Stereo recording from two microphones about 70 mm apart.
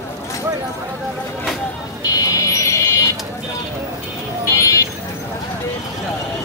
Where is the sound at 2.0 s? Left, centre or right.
Left.